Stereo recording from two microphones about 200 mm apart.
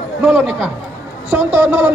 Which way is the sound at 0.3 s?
10° right (ahead or behind).